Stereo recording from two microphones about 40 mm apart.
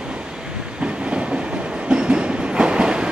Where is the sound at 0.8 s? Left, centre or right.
Right.